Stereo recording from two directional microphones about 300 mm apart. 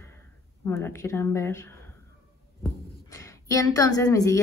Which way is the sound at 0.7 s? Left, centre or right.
Centre.